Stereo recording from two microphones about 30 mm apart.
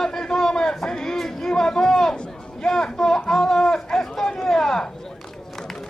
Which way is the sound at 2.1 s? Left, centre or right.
Left.